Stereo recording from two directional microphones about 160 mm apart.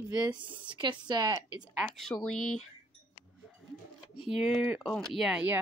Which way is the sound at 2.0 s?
5° left (ahead or behind).